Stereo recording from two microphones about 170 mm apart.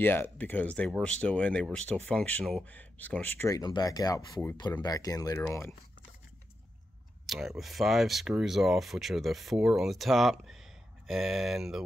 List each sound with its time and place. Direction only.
0.0 s speech: 10° left (ahead or behind)
7.2 s speech: centre (ahead or behind)